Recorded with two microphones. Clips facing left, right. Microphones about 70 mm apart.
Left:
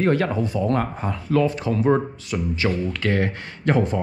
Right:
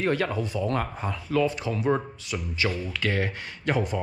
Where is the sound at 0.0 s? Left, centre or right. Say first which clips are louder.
Left 5 dB; left.